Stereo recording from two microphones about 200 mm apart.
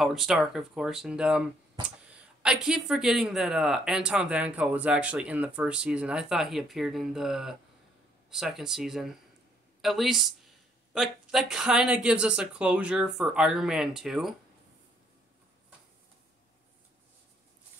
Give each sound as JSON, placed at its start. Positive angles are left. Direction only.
{"t": 0.0, "sound": "speech", "side_deg": 0}